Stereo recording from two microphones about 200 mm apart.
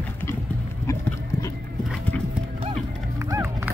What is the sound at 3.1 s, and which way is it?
Music, 15° right (ahead or behind).